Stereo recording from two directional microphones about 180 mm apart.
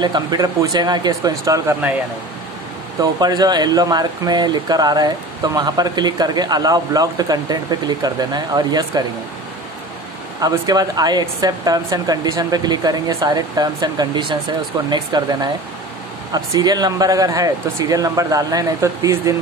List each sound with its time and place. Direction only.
0.0 s speech: 25° right (ahead or behind)
3.0 s speech: 20° right (ahead or behind)
10.4 s speech: 20° right (ahead or behind)